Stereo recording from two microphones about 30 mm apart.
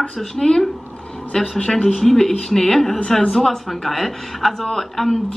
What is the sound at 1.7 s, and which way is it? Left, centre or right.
Humming, left.